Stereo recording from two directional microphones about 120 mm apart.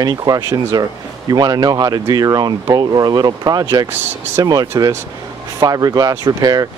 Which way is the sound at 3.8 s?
20° right (ahead or behind).